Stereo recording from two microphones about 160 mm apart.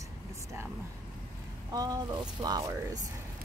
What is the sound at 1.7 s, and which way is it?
Speech, 25° right (ahead or behind).